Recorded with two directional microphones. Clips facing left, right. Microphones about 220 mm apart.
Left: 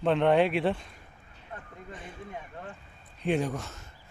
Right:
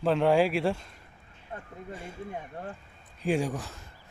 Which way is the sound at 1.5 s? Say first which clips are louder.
Right 3 dB; 30° right (ahead or behind).